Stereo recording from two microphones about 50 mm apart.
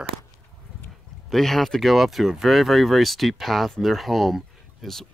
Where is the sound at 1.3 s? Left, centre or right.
Centre.